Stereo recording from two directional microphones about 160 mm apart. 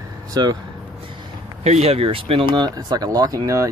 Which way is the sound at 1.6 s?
40° right (ahead or behind).